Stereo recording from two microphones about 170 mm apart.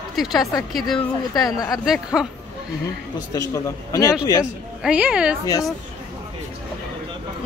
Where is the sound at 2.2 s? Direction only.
5° right (ahead or behind).